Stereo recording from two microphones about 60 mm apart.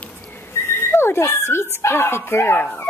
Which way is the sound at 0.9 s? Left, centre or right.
Left.